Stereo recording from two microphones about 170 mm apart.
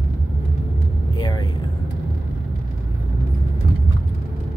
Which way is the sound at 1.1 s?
25° left (ahead or behind).